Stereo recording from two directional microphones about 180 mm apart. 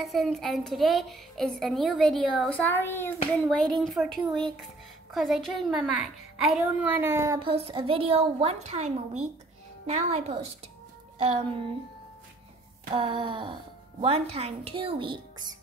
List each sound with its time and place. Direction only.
0.0 s a woman's voice: centre (ahead or behind)
3.4 s a woman's voice: centre (ahead or behind); by 7.3 s 15° right (ahead or behind)
7.3 s a woman's voice: 30° right (ahead or behind)
12.9 s wail: 30° right (ahead or behind)
14.0 s a woman's voice: 35° right (ahead or behind)